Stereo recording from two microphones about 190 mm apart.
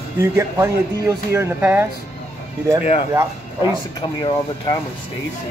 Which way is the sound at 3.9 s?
25° left (ahead or behind).